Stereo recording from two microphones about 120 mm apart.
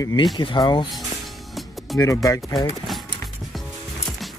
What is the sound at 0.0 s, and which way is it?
Speech, 35° left (ahead or behind).